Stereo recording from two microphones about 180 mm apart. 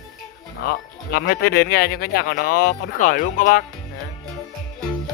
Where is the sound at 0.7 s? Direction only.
60° left (ahead or behind).